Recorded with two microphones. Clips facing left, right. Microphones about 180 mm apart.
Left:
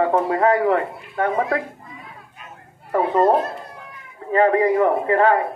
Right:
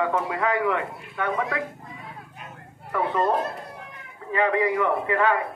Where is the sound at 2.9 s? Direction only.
40° left (ahead or behind).